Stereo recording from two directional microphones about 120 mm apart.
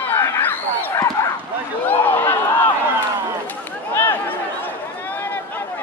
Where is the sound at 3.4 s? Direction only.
15° left (ahead or behind).